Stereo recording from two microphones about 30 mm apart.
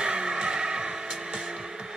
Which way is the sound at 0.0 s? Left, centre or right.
Right.